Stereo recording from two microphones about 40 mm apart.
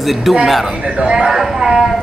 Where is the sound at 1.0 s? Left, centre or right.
Centre.